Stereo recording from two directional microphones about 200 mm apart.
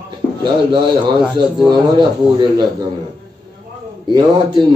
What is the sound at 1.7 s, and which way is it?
Mantra, 20° right (ahead or behind).